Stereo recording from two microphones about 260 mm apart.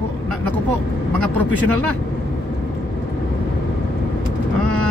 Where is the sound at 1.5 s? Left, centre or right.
Right.